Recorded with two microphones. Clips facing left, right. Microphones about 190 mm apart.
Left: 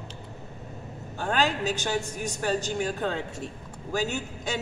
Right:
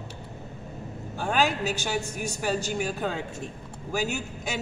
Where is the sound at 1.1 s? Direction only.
10° right (ahead or behind).